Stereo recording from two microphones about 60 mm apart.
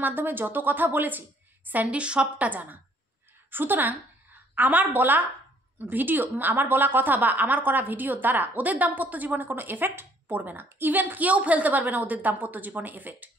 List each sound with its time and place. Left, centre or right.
0.0 s a woman's voice: right